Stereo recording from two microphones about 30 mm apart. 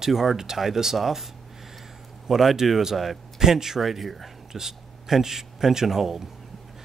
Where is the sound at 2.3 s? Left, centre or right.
Centre.